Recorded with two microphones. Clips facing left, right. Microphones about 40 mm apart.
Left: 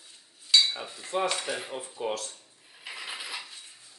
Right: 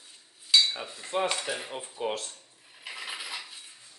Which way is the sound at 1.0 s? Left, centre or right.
Right.